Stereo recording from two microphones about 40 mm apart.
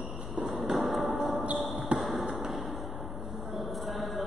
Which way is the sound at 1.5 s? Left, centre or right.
Centre.